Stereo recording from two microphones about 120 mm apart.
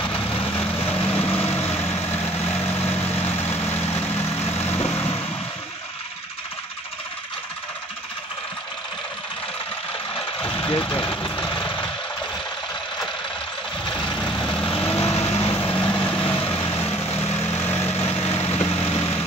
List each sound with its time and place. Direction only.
0.1 s vehicle: 15° left (ahead or behind)
3.3 s vehicle: 20° left (ahead or behind)
10.6 s vehicle: 45° left (ahead or behind)
13.9 s vehicle: 10° left (ahead or behind)
18.0 s vehicle: 55° left (ahead or behind)